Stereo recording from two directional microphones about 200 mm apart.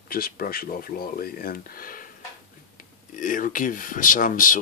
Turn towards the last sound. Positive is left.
turn(degrees=40)  # may be behind; listen again after turning